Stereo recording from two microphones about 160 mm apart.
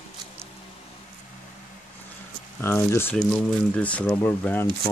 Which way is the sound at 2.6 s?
15° left (ahead or behind).